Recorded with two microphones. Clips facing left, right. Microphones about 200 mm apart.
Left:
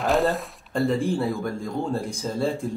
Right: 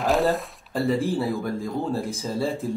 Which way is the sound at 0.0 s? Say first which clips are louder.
Even; centre (ahead or behind).